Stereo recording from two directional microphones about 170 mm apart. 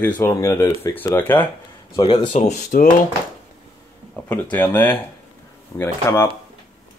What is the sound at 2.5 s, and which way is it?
Speech, 50° left (ahead or behind).